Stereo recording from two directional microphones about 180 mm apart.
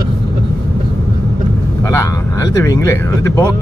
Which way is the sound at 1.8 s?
15° left (ahead or behind).